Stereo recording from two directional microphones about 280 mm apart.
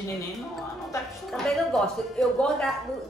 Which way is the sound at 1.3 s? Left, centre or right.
Centre.